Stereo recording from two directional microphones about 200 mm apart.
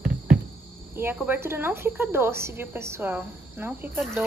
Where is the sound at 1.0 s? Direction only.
10° right (ahead or behind).